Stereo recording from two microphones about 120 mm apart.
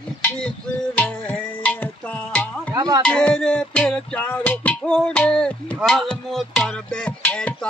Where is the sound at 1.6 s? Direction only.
10° left (ahead or behind).